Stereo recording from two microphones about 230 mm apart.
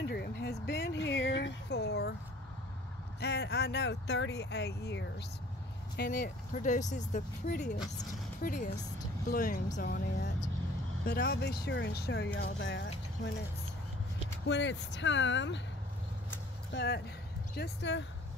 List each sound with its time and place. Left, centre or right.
0.0 s a sound: left
3.2 s speech: left
7.5 s speech: centre
8.0 s speech: left
14.4 s speech: left
16.7 s speech: left